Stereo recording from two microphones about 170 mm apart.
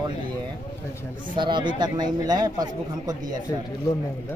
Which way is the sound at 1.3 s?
30° right (ahead or behind).